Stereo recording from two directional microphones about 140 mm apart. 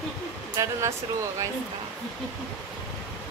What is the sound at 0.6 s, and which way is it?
Speech, 20° right (ahead or behind).